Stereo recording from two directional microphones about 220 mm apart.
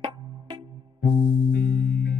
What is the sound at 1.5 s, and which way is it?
Music, 50° left (ahead or behind).